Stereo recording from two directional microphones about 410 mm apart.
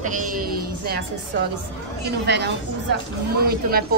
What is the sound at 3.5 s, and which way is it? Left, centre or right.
Speech, right.